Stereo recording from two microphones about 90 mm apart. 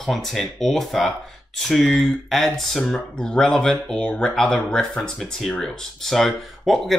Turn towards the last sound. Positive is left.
turn(degrees=0)  # may be behind; listen again after turning